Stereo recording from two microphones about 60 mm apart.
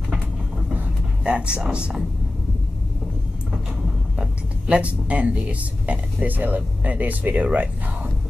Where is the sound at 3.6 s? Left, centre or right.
Centre.